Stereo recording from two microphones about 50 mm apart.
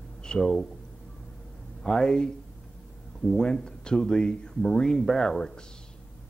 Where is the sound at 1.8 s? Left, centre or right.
Centre.